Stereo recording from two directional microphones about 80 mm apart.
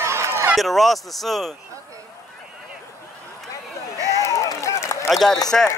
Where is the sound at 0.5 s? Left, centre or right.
Centre.